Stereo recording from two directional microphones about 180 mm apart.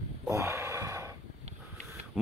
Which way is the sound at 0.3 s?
15° right (ahead or behind).